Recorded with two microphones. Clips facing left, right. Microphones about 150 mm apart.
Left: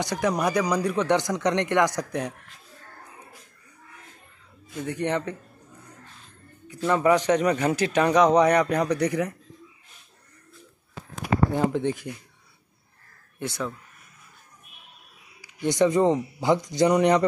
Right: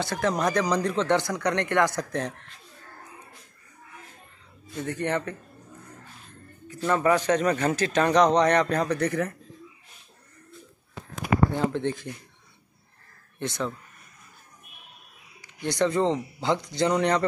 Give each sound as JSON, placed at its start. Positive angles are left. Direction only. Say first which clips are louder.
{"t": 0.0, "sound": "speech", "louder": "left 1 dB", "side_deg": 15}
{"t": 4.7, "sound": "speech", "louder": "left 1 dB", "side_deg": 15}
{"t": 6.9, "sound": "speech", "louder": "left 2 dB", "side_deg": 15}
{"t": 11.5, "sound": "speech", "louder": "left 2 dB", "side_deg": 15}
{"t": 13.4, "sound": "speech", "louder": "right 1 dB", "side_deg": 5}
{"t": 15.4, "sound": "speech", "louder": "left 4 dB", "side_deg": 15}